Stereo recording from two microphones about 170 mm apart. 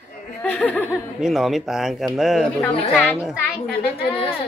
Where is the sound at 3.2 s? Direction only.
Centre (ahead or behind).